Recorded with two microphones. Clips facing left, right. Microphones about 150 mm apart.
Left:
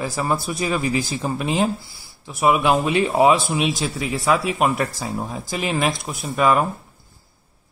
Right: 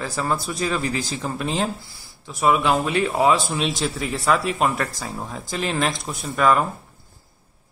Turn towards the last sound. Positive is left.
turn(degrees=10)  # may be behind; listen again after turning